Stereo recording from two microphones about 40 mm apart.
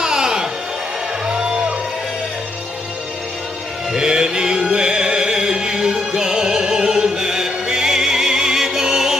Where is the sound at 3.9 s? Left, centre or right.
Centre.